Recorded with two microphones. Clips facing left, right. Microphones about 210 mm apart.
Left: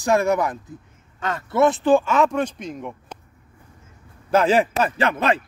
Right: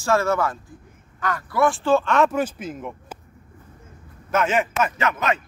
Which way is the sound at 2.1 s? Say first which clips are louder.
Even; centre (ahead or behind).